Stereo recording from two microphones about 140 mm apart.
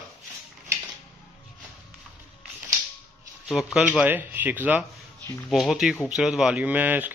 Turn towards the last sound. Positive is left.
turn(degrees=-10)  # may be behind; listen again after turning